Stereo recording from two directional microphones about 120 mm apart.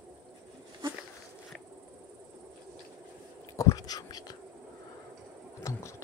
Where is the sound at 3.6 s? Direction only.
25° left (ahead or behind).